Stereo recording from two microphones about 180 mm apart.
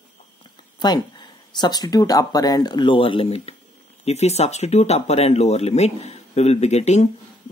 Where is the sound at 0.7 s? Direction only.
25° left (ahead or behind).